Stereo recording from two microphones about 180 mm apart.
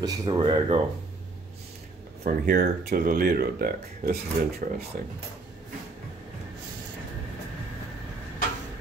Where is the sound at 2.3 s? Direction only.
50° right (ahead or behind).